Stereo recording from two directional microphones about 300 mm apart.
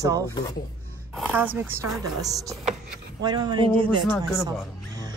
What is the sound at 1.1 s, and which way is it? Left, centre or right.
Speech, centre.